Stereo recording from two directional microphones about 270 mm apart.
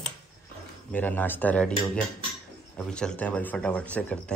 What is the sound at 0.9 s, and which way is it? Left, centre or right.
Speech, centre.